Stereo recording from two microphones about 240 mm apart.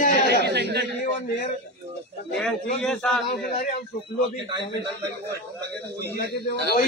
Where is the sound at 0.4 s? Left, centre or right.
Right.